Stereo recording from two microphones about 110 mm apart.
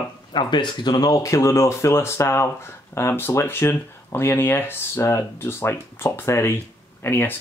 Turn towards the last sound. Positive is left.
turn(degrees=20)  # may be behind; listen again after turning